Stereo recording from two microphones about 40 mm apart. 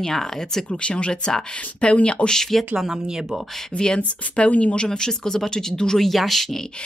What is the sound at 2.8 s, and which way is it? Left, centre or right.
Speech, centre.